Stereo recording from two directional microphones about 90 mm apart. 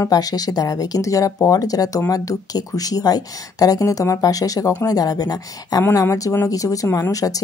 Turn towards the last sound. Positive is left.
turn(degrees=40)  # may be behind; listen again after turning